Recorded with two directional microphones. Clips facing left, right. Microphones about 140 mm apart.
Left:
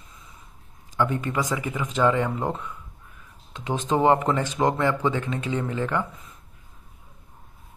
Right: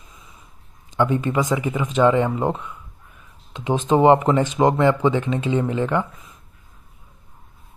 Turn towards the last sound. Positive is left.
turn(degrees=-20)  # may be behind; listen again after turning